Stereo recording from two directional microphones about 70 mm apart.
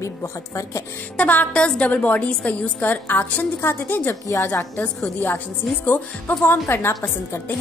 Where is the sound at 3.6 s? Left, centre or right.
Left.